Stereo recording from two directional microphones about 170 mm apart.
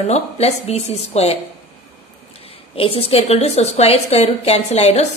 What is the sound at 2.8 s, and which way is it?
A woman's voice, 35° left (ahead or behind).